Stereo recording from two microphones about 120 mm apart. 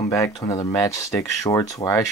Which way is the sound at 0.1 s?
25° left (ahead or behind).